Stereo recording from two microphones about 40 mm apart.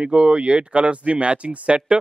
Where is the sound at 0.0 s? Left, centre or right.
Right.